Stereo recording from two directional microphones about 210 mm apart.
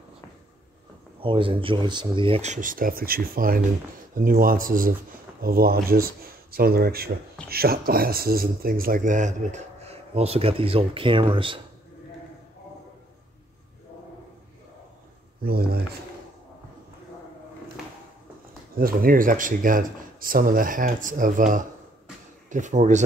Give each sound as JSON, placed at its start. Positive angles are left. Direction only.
{"t": 1.2, "sound": "speech", "side_deg": -25}
{"t": 15.4, "sound": "speech", "side_deg": -45}
{"t": 18.8, "sound": "speech", "side_deg": -45}